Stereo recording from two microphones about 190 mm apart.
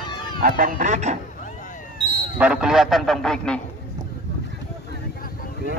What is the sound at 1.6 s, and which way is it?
Basketball bounce, 35° left (ahead or behind).